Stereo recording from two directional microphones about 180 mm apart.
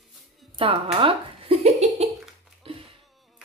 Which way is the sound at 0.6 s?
30° right (ahead or behind).